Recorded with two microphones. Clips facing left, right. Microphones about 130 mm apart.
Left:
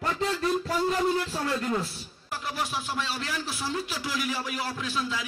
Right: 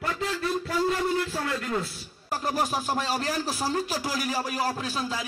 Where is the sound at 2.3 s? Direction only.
40° right (ahead or behind).